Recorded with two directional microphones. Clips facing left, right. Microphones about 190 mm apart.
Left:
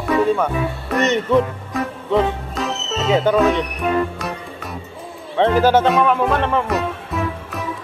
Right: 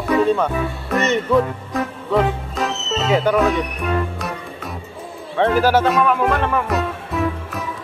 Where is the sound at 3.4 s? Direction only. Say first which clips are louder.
Left 1 dB; centre (ahead or behind).